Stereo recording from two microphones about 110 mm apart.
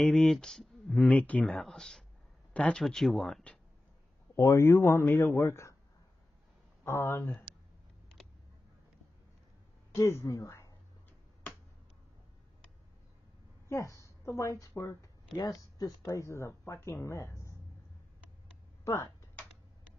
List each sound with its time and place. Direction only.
0.0 s speech: 5° left (ahead or behind)
4.4 s speech: 25° left (ahead or behind)
6.8 s speech: 20° left (ahead or behind)
9.9 s speech: 25° left (ahead or behind)
13.7 s a woman's voice: 30° left (ahead or behind)